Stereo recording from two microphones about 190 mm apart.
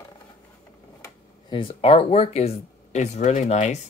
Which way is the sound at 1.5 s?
25° left (ahead or behind).